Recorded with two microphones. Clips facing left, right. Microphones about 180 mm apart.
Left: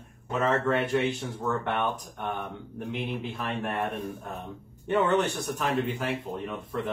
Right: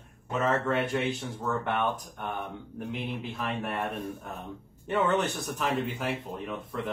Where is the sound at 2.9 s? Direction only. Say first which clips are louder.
Left 3 dB; centre (ahead or behind).